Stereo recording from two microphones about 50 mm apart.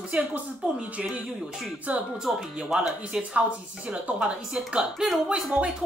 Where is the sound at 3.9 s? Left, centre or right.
Right.